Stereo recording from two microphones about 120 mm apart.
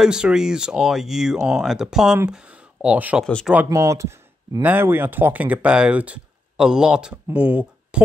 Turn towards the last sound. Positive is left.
turn(degrees=-10)  # may be behind; listen again after turning